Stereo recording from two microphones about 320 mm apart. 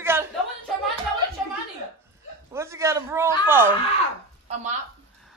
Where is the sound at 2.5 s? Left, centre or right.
Centre.